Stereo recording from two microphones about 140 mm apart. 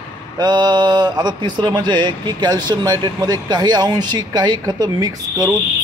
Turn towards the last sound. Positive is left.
turn(degrees=-25)  # may be behind; listen again after turning